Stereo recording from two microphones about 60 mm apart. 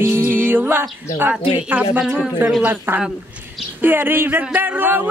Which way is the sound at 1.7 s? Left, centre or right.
Right.